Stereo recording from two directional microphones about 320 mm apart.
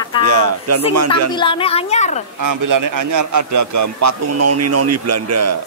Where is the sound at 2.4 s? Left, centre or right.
Right.